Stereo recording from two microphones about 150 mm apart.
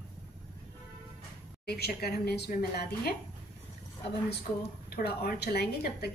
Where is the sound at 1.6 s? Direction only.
90° left.